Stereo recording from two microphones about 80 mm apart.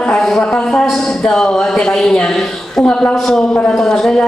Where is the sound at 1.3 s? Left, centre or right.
Centre.